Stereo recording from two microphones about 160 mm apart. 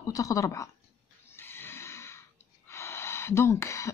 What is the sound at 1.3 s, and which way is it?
Neigh, 15° left (ahead or behind).